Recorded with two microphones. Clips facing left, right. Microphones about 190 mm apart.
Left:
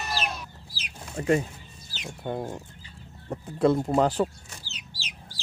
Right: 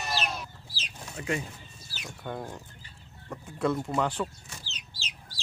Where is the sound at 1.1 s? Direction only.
40° left (ahead or behind).